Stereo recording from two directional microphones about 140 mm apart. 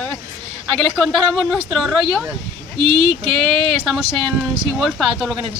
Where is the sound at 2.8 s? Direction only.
40° right (ahead or behind).